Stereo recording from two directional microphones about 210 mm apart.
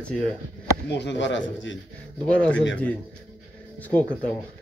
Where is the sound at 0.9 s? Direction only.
55° left (ahead or behind).